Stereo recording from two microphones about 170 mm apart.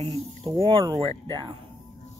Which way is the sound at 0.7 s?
30° right (ahead or behind).